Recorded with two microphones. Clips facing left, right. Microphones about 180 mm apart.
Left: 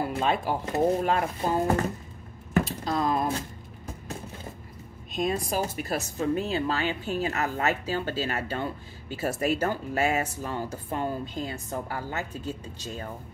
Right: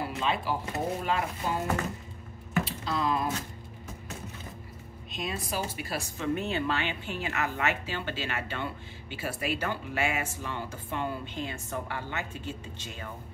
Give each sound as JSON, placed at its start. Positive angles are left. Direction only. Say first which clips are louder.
{"t": 0.1, "sound": "speech", "louder": "left 4 dB", "side_deg": 45}
{"t": 2.5, "sound": "a sound", "louder": "left 4 dB", "side_deg": 45}
{"t": 5.1, "sound": "speech", "louder": "left 7 dB", "side_deg": 45}